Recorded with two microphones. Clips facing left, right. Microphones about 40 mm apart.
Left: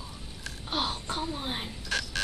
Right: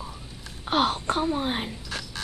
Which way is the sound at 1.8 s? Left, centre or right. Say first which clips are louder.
Left 3 dB; left.